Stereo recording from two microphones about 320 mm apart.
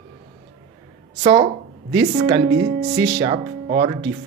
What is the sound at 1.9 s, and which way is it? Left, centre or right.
Speech, centre.